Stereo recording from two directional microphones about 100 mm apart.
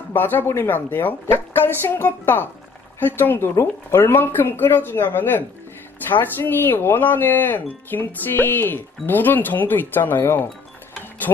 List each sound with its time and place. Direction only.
0.1 s speech: 20° left (ahead or behind)